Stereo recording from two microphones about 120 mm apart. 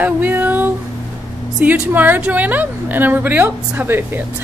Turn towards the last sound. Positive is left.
turn(degrees=-20)  # may be behind; listen again after turning